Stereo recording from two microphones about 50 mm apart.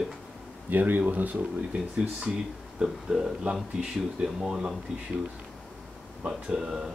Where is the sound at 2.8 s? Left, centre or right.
Centre.